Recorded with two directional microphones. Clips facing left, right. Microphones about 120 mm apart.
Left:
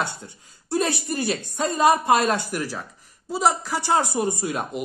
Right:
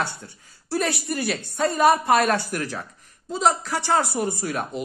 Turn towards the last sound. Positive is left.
turn(degrees=15)  # may be behind; listen again after turning